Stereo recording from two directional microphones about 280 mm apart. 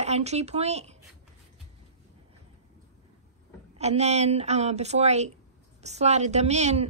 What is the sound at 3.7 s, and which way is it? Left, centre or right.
A woman's voice, right.